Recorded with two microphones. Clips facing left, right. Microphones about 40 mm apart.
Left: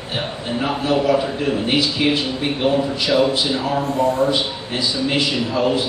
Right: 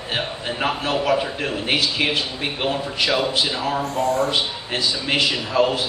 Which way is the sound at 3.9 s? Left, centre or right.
Left.